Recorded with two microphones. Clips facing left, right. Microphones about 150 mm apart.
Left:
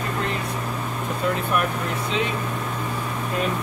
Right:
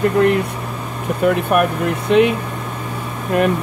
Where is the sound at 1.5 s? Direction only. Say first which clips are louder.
Right 8 dB; 65° right (ahead or behind).